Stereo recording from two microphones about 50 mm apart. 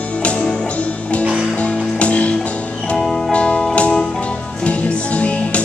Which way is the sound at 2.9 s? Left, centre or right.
Centre.